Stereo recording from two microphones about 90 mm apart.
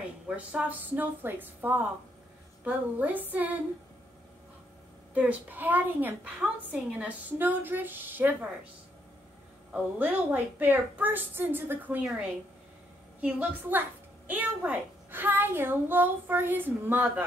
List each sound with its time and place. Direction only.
0.4 s a woman's voice: 15° right (ahead or behind)
5.1 s a woman's voice: 15° right (ahead or behind)
9.7 s a woman's voice: 20° right (ahead or behind)
13.2 s a woman's voice: 20° right (ahead or behind)